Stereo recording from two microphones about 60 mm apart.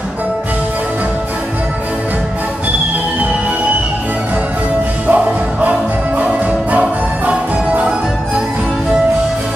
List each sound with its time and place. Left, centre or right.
5.0 s music: right